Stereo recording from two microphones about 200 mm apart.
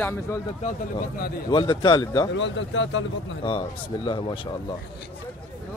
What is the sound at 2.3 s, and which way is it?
Speech, 65° left (ahead or behind).